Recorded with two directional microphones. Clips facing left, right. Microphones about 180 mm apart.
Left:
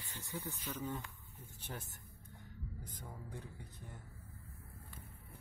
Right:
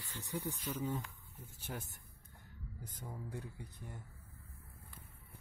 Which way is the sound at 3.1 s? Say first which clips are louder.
Right 5 dB; 10° right (ahead or behind).